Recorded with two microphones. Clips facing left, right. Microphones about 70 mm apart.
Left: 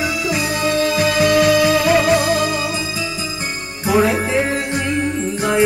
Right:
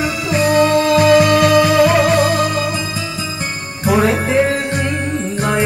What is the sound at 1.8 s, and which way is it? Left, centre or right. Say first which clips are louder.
Music: right 3 dB; centre.